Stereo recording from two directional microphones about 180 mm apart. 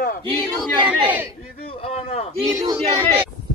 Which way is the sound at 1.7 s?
30° left (ahead or behind).